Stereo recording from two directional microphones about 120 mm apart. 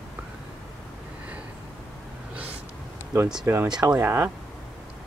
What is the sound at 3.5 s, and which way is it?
Speech, 20° right (ahead or behind).